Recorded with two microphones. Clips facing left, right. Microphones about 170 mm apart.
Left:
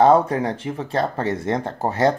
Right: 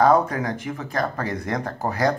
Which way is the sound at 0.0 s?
30° left (ahead or behind).